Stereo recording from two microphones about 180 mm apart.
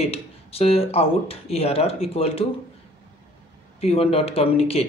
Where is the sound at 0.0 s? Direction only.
35° left (ahead or behind).